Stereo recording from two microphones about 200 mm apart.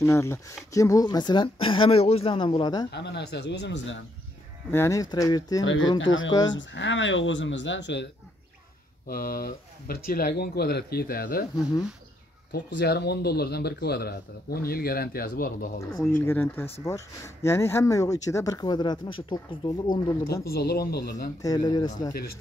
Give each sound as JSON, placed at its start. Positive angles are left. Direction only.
{"t": 0.0, "sound": "speech", "side_deg": 15}
{"t": 2.9, "sound": "speech", "side_deg": 60}
{"t": 4.6, "sound": "speech", "side_deg": 10}
{"t": 5.6, "sound": "speech", "side_deg": 75}
{"t": 9.0, "sound": "speech", "side_deg": 45}
{"t": 12.5, "sound": "speech", "side_deg": 55}
{"t": 16.3, "sound": "speech", "side_deg": 10}
{"t": 20.5, "sound": "speech", "side_deg": 50}
{"t": 21.4, "sound": "speech", "side_deg": 20}